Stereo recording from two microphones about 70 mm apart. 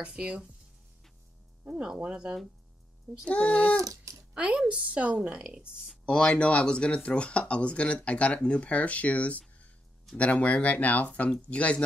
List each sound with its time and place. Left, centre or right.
0.0 s a woman's voice: centre
1.6 s a woman's voice: centre
3.3 s speech: centre
3.8 s a sound: right
4.3 s a woman's voice: centre
6.0 s speech: centre